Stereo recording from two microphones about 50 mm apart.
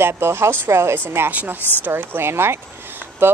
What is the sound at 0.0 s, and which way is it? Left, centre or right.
Speech, right.